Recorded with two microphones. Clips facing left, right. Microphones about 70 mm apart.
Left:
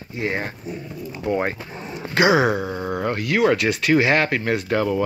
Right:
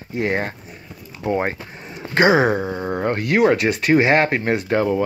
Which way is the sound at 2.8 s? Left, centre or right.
Right.